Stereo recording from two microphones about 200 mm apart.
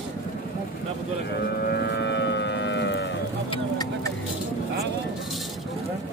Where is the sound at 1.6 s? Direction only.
55° left (ahead or behind).